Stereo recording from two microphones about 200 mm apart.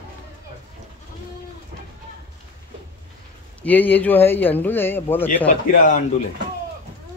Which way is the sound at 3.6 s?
10° left (ahead or behind).